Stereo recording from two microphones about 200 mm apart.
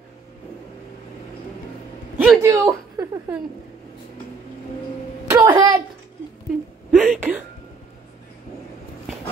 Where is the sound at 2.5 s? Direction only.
15° right (ahead or behind).